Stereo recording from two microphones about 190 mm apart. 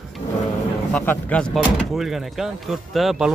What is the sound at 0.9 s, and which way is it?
Speech, 5° left (ahead or behind).